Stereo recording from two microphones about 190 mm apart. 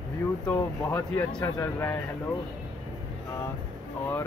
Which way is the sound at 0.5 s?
15° left (ahead or behind).